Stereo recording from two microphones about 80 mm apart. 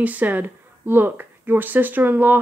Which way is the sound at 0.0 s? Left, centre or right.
Centre.